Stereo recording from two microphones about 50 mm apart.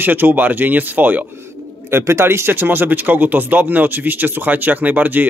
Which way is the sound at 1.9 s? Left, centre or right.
Right.